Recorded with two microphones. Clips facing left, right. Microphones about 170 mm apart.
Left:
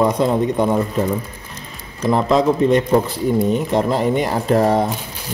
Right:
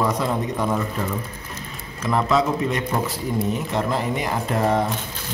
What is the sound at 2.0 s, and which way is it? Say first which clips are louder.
Speech: left 5 dB; 30° left (ahead or behind).